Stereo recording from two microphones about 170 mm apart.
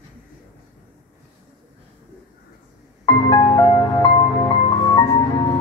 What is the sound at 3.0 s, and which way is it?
Music, 25° left (ahead or behind).